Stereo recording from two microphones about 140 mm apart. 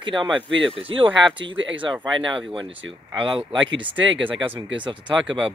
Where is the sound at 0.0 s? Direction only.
35° right (ahead or behind).